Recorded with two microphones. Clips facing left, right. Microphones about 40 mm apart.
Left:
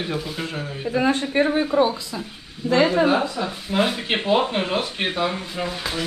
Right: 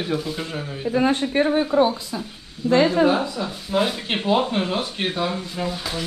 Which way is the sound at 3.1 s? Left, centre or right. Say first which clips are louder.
Left 1 dB; centre.